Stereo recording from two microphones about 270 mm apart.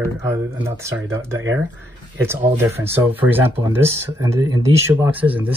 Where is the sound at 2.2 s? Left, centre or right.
Centre.